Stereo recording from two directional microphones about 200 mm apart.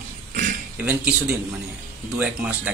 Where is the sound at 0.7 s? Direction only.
10° right (ahead or behind).